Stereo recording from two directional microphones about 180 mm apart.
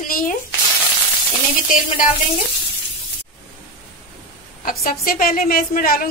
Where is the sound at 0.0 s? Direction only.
50° left (ahead or behind).